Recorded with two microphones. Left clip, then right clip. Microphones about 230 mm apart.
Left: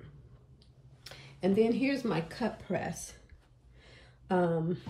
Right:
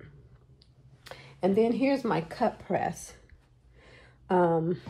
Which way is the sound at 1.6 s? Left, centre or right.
Centre.